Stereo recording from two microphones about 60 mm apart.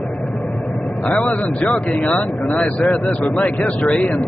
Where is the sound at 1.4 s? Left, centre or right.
Left.